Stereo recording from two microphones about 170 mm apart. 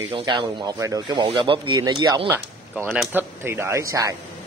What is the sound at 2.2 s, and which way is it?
Speech, 10° right (ahead or behind).